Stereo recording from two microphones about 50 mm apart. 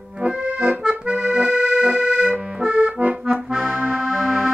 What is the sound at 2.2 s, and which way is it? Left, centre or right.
Accordion, right.